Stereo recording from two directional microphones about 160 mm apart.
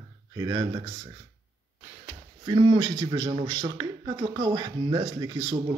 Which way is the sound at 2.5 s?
30° right (ahead or behind).